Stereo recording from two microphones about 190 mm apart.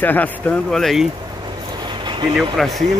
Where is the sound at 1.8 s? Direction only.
25° right (ahead or behind).